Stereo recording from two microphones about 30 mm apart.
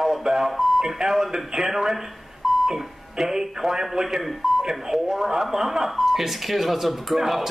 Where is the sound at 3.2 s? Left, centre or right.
Centre.